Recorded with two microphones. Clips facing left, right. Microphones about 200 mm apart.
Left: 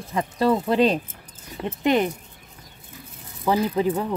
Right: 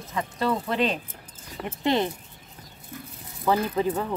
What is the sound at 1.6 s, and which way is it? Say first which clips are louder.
Speech: left 4 dB; 15° left (ahead or behind).